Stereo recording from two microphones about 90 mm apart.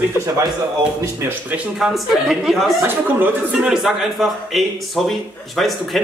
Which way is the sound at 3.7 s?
Centre (ahead or behind).